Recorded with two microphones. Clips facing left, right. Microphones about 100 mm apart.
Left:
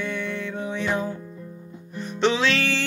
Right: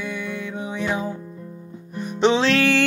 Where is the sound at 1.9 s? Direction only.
15° right (ahead or behind).